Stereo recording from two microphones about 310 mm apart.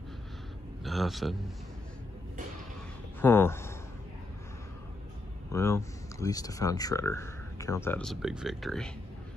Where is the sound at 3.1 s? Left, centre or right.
Centre.